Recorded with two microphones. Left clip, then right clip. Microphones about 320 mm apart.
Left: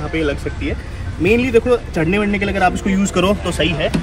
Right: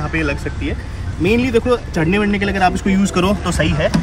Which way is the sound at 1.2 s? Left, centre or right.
Centre.